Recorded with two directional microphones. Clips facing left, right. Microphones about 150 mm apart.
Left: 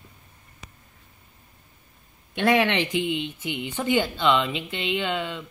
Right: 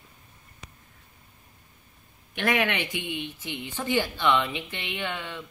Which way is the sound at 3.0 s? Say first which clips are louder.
Left 6 dB; 15° left (ahead or behind).